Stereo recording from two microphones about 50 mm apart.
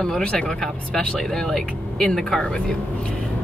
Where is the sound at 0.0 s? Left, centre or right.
Centre.